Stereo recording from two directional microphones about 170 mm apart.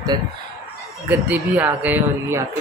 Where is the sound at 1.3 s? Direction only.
10° right (ahead or behind).